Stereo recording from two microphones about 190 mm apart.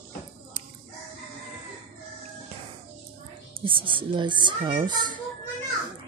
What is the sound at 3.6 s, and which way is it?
Speech, 25° right (ahead or behind).